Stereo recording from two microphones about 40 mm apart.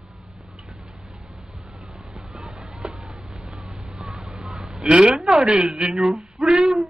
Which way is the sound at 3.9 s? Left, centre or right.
Centre.